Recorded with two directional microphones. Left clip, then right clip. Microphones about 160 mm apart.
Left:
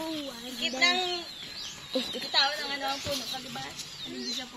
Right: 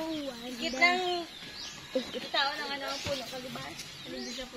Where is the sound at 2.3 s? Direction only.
10° right (ahead or behind).